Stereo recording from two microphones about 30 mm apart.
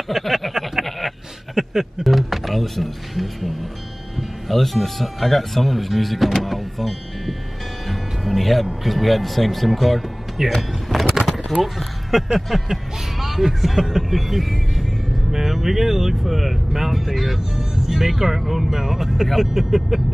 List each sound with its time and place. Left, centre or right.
0.1 s a sound: centre
0.8 s a sound: centre
1.5 s speech: centre
2.0 s speech: centre
6.3 s power windows: centre
7.9 s music: centre
8.8 s speech: centre
11.2 s a sound: centre
11.6 s speech: centre